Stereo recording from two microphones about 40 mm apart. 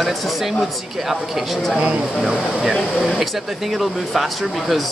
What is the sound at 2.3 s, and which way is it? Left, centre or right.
Speech, centre.